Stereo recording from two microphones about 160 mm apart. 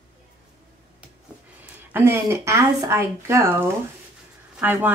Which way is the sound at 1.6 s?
15° right (ahead or behind).